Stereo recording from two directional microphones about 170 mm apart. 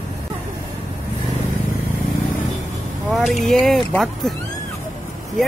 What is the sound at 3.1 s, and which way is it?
Speech, centre (ahead or behind).